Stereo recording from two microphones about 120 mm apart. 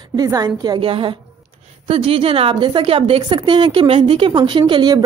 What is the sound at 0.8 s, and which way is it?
A woman's voice, 50° right (ahead or behind).